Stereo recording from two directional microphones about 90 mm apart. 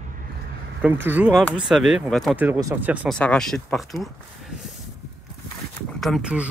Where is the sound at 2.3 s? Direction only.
20° right (ahead or behind).